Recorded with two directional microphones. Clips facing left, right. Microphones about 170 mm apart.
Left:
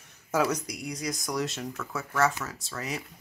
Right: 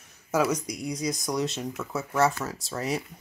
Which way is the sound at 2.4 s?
35° right (ahead or behind).